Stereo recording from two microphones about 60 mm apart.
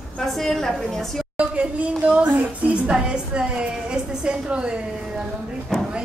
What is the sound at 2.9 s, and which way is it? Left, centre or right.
A woman's voice, centre.